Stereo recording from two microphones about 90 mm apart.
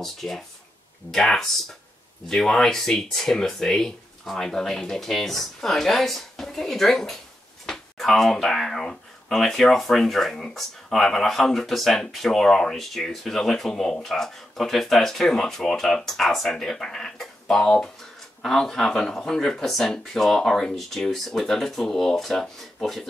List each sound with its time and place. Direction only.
0.0 s speech: 5° left (ahead or behind)